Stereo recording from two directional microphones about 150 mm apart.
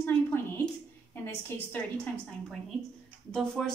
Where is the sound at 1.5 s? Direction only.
15° left (ahead or behind).